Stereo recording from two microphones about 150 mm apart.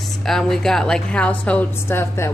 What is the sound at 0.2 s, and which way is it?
A woman's voice, centre (ahead or behind).